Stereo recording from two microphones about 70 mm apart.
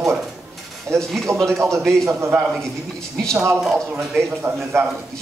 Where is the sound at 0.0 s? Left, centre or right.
Centre.